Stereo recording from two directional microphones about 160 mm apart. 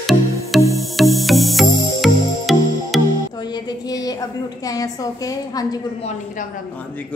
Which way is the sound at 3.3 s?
25° left (ahead or behind).